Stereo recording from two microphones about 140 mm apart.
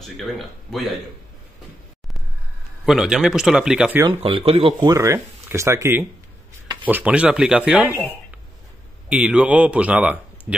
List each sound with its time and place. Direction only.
0.0 s speech: centre (ahead or behind)
2.8 s speech: centre (ahead or behind)
4.1 s speech: 40° right (ahead or behind)
4.8 s speech: 20° right (ahead or behind)
7.9 s speech: 15° left (ahead or behind)
9.1 s speech: 10° right (ahead or behind)